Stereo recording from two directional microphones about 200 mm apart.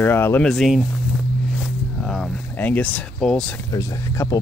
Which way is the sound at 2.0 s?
Centre (ahead or behind).